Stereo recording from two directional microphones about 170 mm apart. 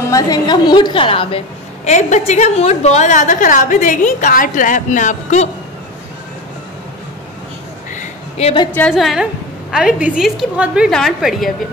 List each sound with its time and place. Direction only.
0.1 s a woman's voice: 25° left (ahead or behind)
1.9 s a woman's voice: 45° left (ahead or behind)
7.9 s a sound: 40° left (ahead or behind)
8.9 s a woman's voice: centre (ahead or behind)